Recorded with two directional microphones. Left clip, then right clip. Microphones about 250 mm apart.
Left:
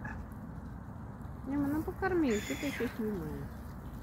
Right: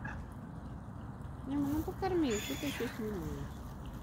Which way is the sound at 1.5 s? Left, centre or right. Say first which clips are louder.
Left 2 dB; left.